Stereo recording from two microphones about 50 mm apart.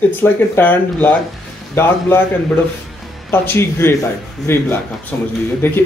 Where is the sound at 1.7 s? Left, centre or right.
Left.